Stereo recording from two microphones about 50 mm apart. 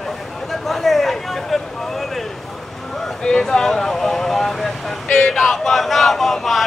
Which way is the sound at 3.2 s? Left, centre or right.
Centre.